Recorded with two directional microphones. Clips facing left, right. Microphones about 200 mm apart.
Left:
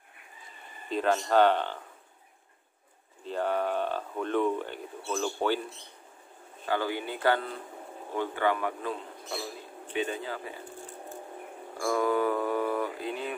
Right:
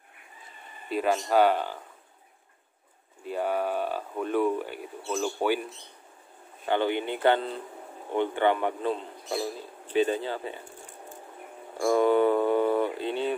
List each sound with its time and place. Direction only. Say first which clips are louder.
0.8 s speech: right 1 dB; 10° right (ahead or behind)
3.3 s speech: right 1 dB; 10° right (ahead or behind)
6.6 s speech: right 4 dB; 25° right (ahead or behind)
9.9 s speech: right 7 dB; 35° right (ahead or behind)
11.8 s speech: right 5 dB; 25° right (ahead or behind)